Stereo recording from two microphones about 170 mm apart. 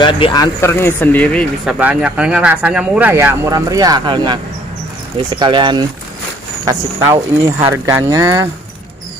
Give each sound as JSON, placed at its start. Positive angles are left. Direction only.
{"t": 0.0, "sound": "speech", "side_deg": 25}
{"t": 1.7, "sound": "speech", "side_deg": -5}